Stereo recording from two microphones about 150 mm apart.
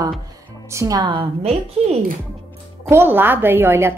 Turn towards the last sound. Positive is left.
turn(degrees=-15)  # may be behind; listen again after turning